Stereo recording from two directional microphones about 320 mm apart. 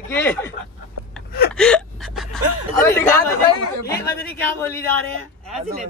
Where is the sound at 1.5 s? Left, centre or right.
Centre.